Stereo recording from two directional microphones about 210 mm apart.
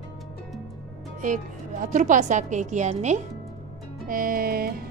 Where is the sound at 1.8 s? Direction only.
40° right (ahead or behind).